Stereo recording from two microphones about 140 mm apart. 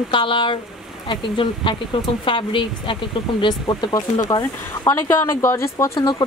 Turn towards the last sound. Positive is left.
turn(degrees=30)  # may be behind; listen again after turning